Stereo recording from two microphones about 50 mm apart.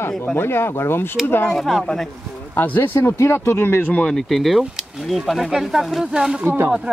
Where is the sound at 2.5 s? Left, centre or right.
Left.